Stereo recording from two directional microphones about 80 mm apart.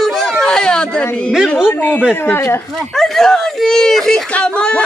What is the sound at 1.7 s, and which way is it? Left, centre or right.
Speech, left.